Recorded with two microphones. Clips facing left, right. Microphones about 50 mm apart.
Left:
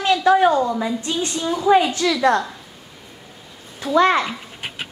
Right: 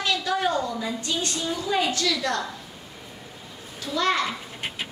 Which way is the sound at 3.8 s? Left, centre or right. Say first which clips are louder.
Left 9 dB; left.